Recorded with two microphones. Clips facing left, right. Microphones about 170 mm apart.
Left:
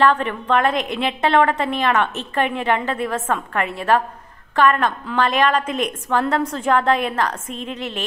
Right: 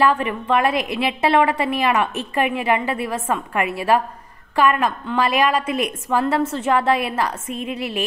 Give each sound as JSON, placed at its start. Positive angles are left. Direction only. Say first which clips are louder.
{"t": 0.0, "sound": "a woman's voice", "louder": "left 1 dB", "side_deg": -10}